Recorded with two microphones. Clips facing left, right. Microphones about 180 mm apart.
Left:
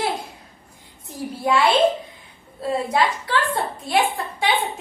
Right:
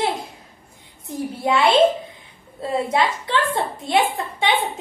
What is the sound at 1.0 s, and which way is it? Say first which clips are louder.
Speech: right 1 dB; 20° right (ahead or behind).